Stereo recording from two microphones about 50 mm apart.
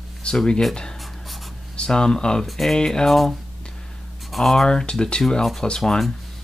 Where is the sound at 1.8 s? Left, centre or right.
Centre.